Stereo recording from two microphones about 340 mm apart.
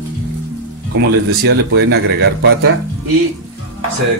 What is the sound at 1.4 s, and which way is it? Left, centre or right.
Speech, right.